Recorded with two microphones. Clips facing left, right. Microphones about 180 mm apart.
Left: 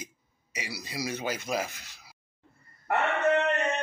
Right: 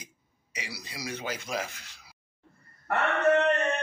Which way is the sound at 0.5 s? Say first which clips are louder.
Left 2 dB; 45° left (ahead or behind).